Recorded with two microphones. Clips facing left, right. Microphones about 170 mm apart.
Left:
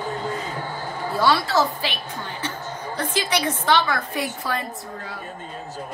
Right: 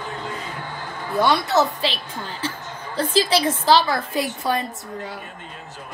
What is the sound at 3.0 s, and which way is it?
A woman's voice, 30° right (ahead or behind).